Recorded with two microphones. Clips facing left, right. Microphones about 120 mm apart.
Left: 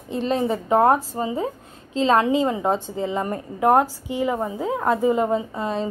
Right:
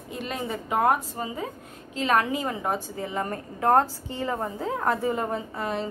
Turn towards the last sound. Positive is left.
turn(degrees=20)  # may be behind; listen again after turning